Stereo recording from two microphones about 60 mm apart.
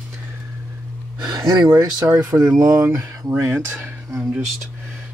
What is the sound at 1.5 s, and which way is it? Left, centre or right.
Speech, right.